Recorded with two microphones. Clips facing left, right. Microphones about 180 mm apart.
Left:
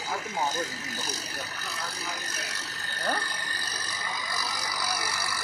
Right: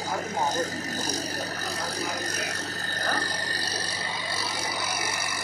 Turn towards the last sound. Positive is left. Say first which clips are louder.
# right 1 dB
turn(degrees=-20)  # may be behind; listen again after turning